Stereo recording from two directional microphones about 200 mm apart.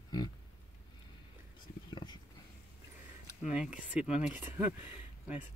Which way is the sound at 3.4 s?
5° right (ahead or behind).